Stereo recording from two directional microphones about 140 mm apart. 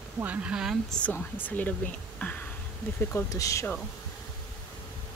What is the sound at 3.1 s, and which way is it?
Speech, 25° left (ahead or behind).